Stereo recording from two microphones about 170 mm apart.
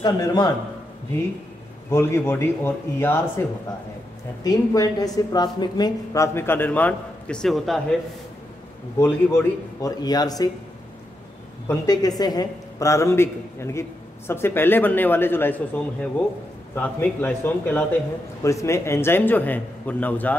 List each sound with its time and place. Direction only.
0.0 s speech: 25° left (ahead or behind)
1.9 s a man's voice: 15° left (ahead or behind); by 8.0 s centre (ahead or behind)
9.3 s speech: 20° left (ahead or behind)
11.6 s a man's voice: 15° left (ahead or behind)